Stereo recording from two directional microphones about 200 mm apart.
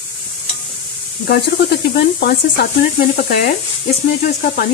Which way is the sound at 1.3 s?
55° left (ahead or behind).